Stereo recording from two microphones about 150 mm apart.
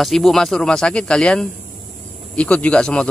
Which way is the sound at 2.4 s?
10° left (ahead or behind).